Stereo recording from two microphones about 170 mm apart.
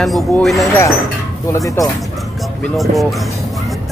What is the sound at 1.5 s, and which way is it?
Speech, 20° left (ahead or behind).